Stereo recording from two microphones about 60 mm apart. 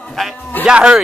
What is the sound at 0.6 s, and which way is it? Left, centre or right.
Speech, centre.